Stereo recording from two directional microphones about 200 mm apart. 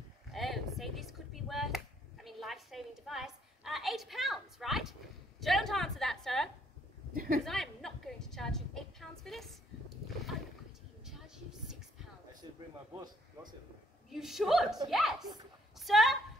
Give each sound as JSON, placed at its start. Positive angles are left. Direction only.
{"t": 0.3, "sound": "chop", "side_deg": 0}
{"t": 5.4, "sound": "a woman's voice", "side_deg": 0}
{"t": 7.4, "sound": "a sound", "side_deg": 0}
{"t": 11.1, "sound": "a sound", "side_deg": 0}
{"t": 12.9, "sound": "speech", "side_deg": -20}
{"t": 14.1, "sound": "a woman's voice", "side_deg": 0}